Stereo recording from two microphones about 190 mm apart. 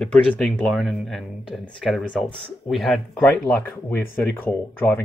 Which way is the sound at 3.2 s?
10° left (ahead or behind).